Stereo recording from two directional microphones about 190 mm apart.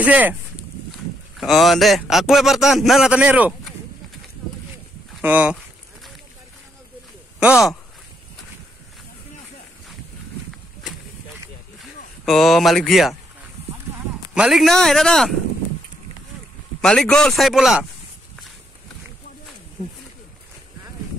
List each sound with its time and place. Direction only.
0.0 s speech: 10° right (ahead or behind)
5.2 s speech: 5° right (ahead or behind)
7.3 s speech: 5° right (ahead or behind)
12.3 s a man's voice: centre (ahead or behind)
14.3 s a man's voice: 5° right (ahead or behind)
16.8 s a man's voice: 5° left (ahead or behind)